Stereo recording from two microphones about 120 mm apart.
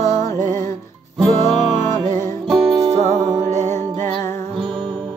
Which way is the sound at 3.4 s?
75° right (ahead or behind).